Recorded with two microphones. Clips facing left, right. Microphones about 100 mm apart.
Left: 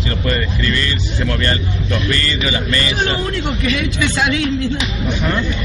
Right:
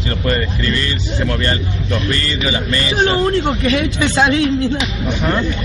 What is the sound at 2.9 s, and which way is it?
Speech, 35° right (ahead or behind).